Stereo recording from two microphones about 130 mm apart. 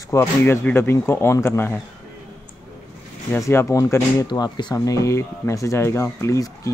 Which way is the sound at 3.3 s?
25° left (ahead or behind).